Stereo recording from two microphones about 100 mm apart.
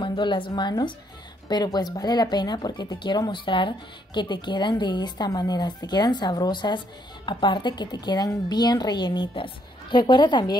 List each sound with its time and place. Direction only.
0.0 s speech: 55° left (ahead or behind)